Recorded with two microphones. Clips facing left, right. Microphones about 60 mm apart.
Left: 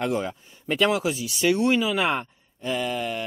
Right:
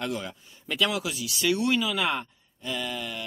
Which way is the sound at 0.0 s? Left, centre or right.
Left.